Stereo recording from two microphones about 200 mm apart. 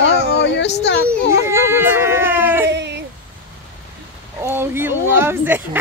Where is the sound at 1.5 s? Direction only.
15° right (ahead or behind).